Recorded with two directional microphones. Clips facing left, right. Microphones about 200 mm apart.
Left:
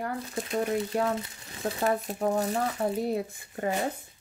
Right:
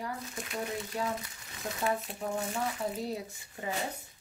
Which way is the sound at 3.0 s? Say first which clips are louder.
Left 7 dB; 55° left (ahead or behind).